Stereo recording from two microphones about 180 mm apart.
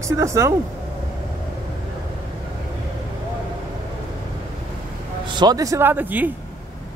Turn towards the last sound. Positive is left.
turn(degrees=-10)  # may be behind; listen again after turning